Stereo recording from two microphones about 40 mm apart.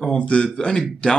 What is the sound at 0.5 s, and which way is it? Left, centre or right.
Speech, centre.